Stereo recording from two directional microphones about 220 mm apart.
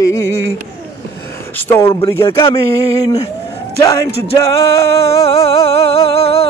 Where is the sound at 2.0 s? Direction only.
25° left (ahead or behind).